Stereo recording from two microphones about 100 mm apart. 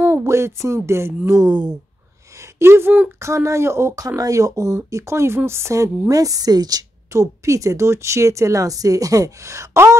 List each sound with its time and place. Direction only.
0.0 s speech: 30° right (ahead or behind)
3.2 s speech: 30° right (ahead or behind)